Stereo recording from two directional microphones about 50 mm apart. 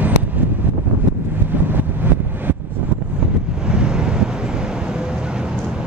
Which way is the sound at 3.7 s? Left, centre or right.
Centre.